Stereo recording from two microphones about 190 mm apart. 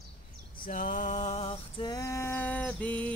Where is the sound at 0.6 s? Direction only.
45° left (ahead or behind).